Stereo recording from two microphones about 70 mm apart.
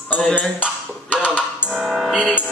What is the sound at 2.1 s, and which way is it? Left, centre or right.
Speech, centre.